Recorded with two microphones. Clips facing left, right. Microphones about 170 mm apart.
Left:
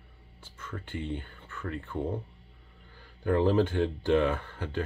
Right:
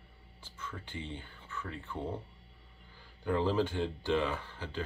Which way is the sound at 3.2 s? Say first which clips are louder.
Left 6 dB; 55° left (ahead or behind).